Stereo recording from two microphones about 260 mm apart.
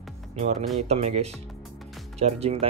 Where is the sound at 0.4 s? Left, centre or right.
Right.